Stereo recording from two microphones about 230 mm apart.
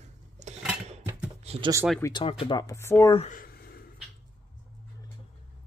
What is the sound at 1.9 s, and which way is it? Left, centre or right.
Speech, centre.